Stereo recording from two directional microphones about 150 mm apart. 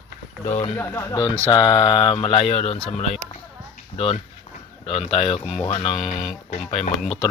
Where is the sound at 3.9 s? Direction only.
40° left (ahead or behind).